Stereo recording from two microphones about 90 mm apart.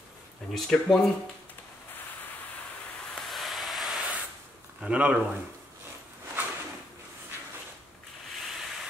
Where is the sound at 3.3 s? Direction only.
Centre (ahead or behind).